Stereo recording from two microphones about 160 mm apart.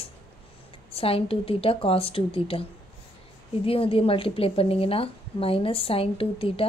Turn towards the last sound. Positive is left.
turn(degrees=35)  # may be behind; listen again after turning